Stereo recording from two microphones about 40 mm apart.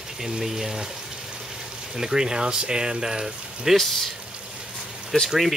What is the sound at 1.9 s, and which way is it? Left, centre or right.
Speech, centre.